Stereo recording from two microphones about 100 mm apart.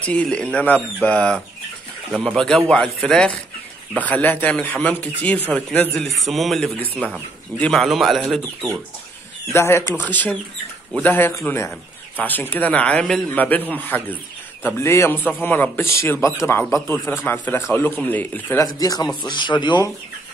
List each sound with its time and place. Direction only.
0.0 s a man's voice: 10° left (ahead or behind)
7.5 s speech: 15° left (ahead or behind)
7.8 s a man's voice: centre (ahead or behind)
9.5 s speech: 25° left (ahead or behind)
10.0 s speech: 15° left (ahead or behind)
18.6 s speech: 35° left (ahead or behind)
19.2 s speech: 50° left (ahead or behind)